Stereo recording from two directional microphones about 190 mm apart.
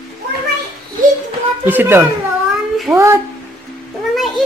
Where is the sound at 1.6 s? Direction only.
10° right (ahead or behind).